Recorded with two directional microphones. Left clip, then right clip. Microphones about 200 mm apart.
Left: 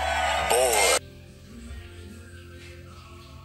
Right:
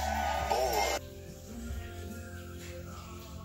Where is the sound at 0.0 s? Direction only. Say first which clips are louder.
Left 7 dB; 45° left (ahead or behind).